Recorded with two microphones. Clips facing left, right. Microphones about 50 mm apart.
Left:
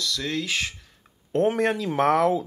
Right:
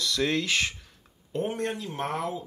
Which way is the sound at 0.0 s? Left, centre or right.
Right.